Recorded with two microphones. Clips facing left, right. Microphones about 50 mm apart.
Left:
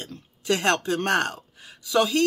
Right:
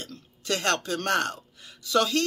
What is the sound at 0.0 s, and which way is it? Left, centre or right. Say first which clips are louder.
Speech: left 3 dB; left.